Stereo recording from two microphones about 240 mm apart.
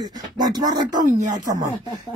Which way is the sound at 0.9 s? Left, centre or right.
Right.